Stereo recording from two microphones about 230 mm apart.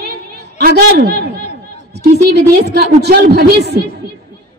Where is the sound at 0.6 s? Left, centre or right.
Right.